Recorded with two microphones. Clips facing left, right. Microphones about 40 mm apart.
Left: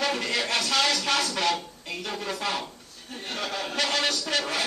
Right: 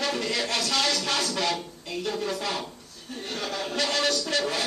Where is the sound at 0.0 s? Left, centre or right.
Centre.